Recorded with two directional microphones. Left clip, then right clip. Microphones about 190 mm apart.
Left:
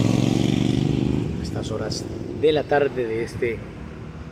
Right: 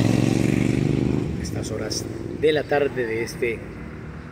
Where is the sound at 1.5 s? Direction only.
Centre (ahead or behind).